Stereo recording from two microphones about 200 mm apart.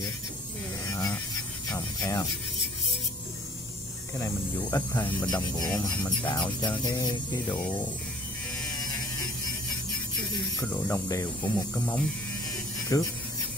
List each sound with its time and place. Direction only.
0.9 s a sound: 15° left (ahead or behind)
1.7 s speech: 15° left (ahead or behind)
4.2 s speech: 15° left (ahead or behind)
7.3 s speech: 10° left (ahead or behind)
10.6 s speech: 15° left (ahead or behind)
12.9 s speech: 20° left (ahead or behind)